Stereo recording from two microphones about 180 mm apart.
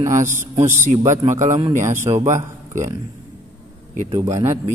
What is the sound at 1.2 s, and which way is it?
A man's voice, 45° right (ahead or behind).